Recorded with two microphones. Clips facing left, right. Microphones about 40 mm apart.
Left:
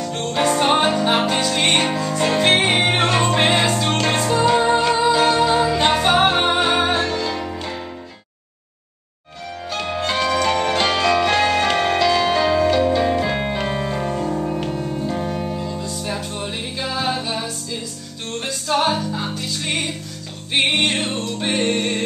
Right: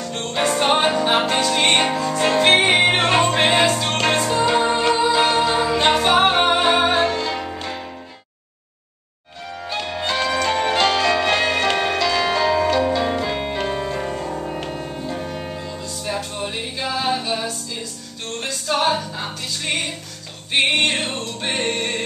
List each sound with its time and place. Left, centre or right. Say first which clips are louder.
0.0 s music: left 2 dB; centre
5.1 s music: left 1 dB; centre
5.4 s music: left 1 dB; centre
7.0 s music: right 2 dB; right
10.2 s music: left 1 dB; centre
10.8 s music: even; centre
14.6 s music: left 4 dB; centre
15.0 s music: left 3 dB; centre
15.3 s music: left 4 dB; centre